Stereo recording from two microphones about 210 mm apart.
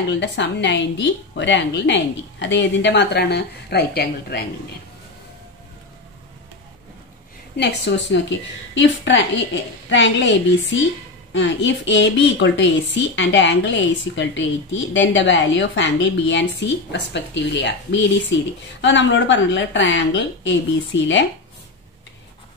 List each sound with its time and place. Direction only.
0.2 s a woman's voice: 55° left (ahead or behind)
7.5 s a woman's voice: 55° left (ahead or behind)